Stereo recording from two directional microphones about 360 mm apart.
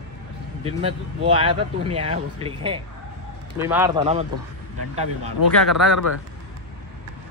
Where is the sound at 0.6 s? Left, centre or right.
Centre.